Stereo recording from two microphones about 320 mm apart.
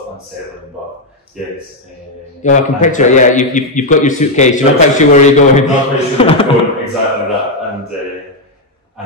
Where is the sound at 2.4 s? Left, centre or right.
Left.